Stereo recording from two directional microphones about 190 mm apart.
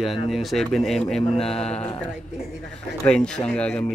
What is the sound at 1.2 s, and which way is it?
Mantra, 30° left (ahead or behind).